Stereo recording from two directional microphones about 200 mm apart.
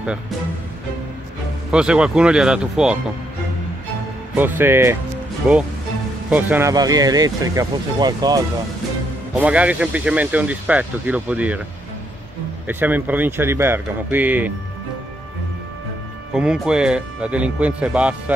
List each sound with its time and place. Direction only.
1.7 s speech: 5° right (ahead or behind)
4.4 s speech: 10° right (ahead or behind)
9.4 s speech: 5° right (ahead or behind)
12.6 s speech: 10° right (ahead or behind)
16.3 s speech: 5° right (ahead or behind)